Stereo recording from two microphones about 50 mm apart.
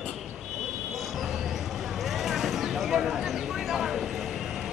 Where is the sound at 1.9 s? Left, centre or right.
Centre.